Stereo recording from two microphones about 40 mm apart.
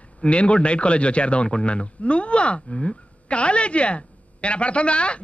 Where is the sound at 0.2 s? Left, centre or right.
Left.